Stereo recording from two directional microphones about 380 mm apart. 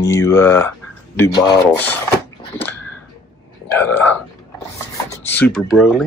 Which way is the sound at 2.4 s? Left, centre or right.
Centre.